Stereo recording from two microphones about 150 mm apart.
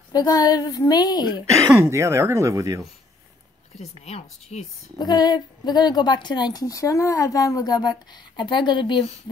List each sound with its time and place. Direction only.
0.1 s a woman's voice: 25° left (ahead or behind)
1.7 s speech: 20° right (ahead or behind)
4.0 s speech: 50° left (ahead or behind)
4.9 s a woman's voice: 25° left (ahead or behind)